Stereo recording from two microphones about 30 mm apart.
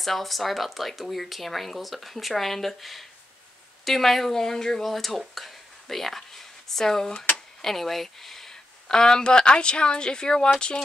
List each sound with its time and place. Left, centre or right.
0.0 s a woman's voice: centre; by 10.5 s left